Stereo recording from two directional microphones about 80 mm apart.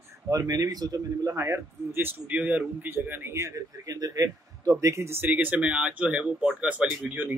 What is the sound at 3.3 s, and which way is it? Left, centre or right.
Speech, right.